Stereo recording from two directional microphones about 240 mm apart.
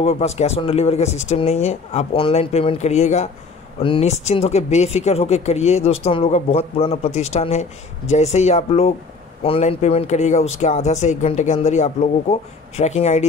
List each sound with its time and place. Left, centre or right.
0.0 s speech: left